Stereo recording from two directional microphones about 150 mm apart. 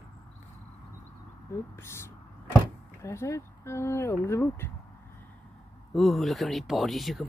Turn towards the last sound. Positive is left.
turn(degrees=0)  # may be behind; listen again after turning